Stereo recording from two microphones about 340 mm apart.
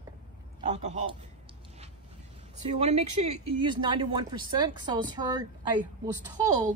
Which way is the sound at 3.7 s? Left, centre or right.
Centre.